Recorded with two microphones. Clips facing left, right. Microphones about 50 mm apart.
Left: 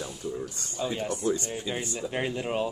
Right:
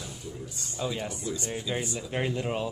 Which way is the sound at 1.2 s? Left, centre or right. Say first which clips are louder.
Left 6 dB; left.